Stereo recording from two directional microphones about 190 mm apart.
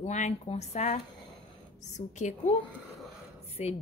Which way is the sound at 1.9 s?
40° left (ahead or behind).